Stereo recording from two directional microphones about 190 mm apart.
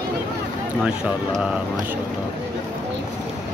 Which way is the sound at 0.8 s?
5° right (ahead or behind).